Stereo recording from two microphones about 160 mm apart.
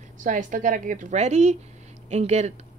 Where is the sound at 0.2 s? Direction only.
55° right (ahead or behind).